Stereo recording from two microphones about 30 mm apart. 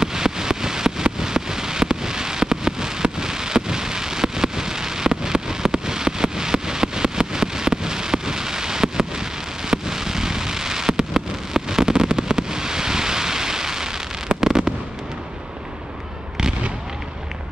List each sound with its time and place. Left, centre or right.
0.0 s rain: centre
9.7 s fireworks: centre